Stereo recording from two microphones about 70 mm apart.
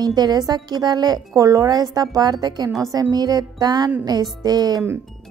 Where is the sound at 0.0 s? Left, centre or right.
Right.